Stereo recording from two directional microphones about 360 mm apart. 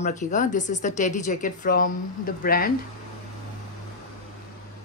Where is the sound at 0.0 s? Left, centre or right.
Centre.